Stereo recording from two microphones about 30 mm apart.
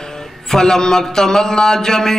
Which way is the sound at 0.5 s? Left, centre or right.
Centre.